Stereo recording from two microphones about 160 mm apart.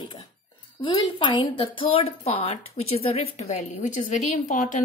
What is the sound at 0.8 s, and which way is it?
A woman's voice, 30° left (ahead or behind).